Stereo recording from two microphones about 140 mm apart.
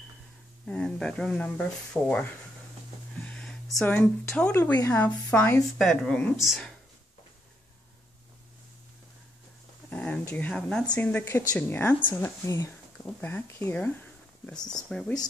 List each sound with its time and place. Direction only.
0.7 s speech: 5° left (ahead or behind)
3.3 s a woman's voice: 5° left (ahead or behind)
9.8 s speech: 10° left (ahead or behind)
14.4 s a woman's voice: 5° left (ahead or behind)